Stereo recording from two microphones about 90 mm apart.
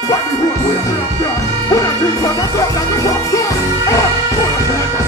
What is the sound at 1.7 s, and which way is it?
Music, 40° left (ahead or behind).